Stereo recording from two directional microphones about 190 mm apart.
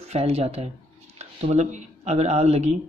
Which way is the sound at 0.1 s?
30° right (ahead or behind).